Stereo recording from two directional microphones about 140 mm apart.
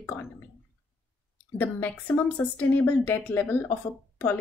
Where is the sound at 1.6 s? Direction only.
15° left (ahead or behind).